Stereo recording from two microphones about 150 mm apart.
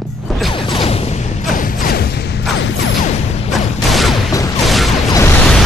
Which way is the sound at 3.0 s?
45° left (ahead or behind).